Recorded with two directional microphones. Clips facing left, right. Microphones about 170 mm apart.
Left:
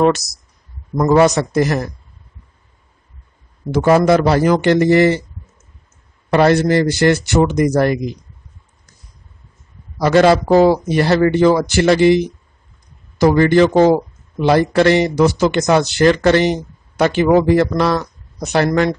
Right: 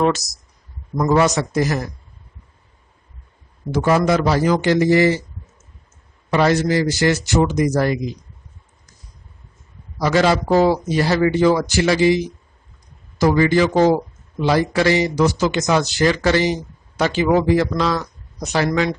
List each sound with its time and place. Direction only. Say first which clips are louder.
0.9 s a man's voice: left 4 dB; 45° left (ahead or behind)
3.7 s a man's voice: left 5 dB; 60° left (ahead or behind)
6.3 s a man's voice: left 4 dB; 60° left (ahead or behind)
9.9 s a man's voice: left 5 dB; 60° left (ahead or behind)